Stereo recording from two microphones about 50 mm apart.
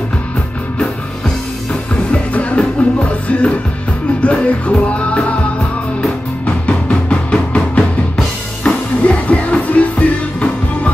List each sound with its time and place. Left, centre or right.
2.3 s music: left
7.1 s music: left